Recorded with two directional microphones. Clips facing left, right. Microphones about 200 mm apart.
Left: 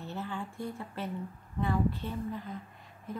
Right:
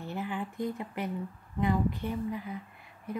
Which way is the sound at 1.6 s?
15° right (ahead or behind).